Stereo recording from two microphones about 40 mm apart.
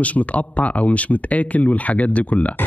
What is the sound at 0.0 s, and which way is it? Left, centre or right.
Speech, left.